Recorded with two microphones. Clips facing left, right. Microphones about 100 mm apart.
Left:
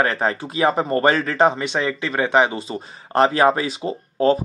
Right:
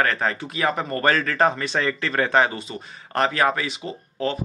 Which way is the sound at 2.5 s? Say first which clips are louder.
Left 5 dB; 30° left (ahead or behind).